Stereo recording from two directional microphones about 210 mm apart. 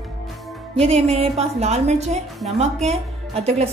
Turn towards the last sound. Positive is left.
turn(degrees=-30)  # may be behind; listen again after turning